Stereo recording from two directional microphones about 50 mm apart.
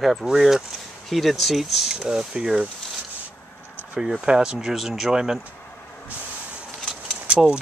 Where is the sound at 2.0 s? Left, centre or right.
Centre.